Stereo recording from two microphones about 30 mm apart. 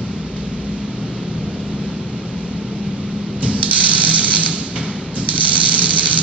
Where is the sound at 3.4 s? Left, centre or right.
Right.